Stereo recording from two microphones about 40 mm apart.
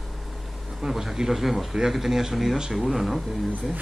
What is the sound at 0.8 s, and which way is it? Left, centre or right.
Speech, centre.